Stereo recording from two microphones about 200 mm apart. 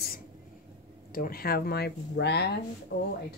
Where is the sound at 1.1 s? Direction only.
45° left (ahead or behind).